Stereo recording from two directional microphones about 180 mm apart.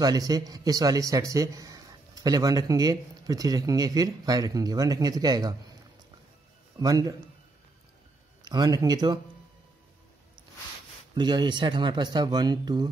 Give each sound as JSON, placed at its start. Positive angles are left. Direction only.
{"t": 0.0, "sound": "a man's voice", "side_deg": -20}
{"t": 6.8, "sound": "a man's voice", "side_deg": -20}
{"t": 8.5, "sound": "a man's voice", "side_deg": -20}
{"t": 11.1, "sound": "a man's voice", "side_deg": -25}